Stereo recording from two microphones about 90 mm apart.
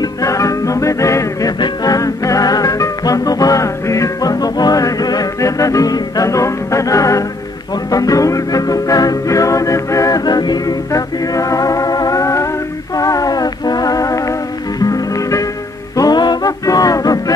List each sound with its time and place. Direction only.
0.0 s music: 40° left (ahead or behind)
16.0 s music: 50° left (ahead or behind)
16.6 s a sound: 40° left (ahead or behind)